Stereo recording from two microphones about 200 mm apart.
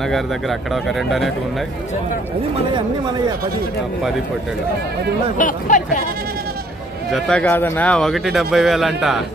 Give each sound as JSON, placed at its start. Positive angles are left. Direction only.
{"t": 0.1, "sound": "speech", "side_deg": 0}
{"t": 5.4, "sound": "speech", "side_deg": 40}
{"t": 7.1, "sound": "speech", "side_deg": 0}